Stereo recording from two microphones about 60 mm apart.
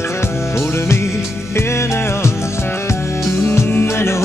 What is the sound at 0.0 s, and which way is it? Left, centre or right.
Music, left.